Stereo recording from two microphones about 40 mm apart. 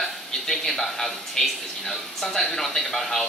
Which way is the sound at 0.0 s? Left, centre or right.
Centre.